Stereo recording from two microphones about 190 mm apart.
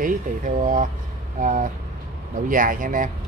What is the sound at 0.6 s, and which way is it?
Speech, 40° right (ahead or behind).